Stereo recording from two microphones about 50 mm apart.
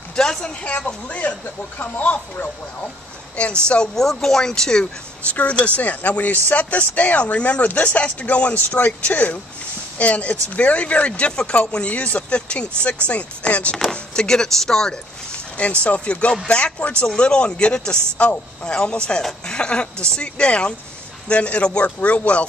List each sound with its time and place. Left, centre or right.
0.1 s speech: centre
0.7 s speech: left
3.6 s speech: centre
3.9 s chopping: centre
5.3 s speech: left
13.9 s chopping: centre
15.3 s speech: left